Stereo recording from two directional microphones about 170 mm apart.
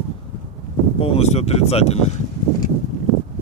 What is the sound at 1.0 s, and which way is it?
Speech, 35° left (ahead or behind).